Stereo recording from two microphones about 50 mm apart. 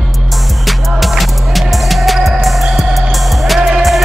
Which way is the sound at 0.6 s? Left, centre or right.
Centre.